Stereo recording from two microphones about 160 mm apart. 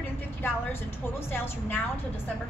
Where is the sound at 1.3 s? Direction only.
15° left (ahead or behind).